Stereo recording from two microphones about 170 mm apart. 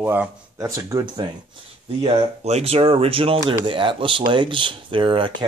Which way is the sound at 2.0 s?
35° right (ahead or behind).